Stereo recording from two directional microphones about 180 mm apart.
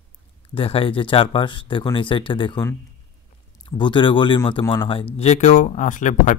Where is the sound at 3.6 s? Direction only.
25° left (ahead or behind).